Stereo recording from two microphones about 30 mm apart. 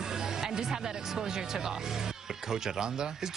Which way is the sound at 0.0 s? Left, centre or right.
Centre.